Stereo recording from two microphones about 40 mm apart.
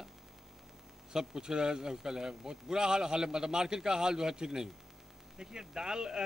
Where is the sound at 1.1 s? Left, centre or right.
Centre.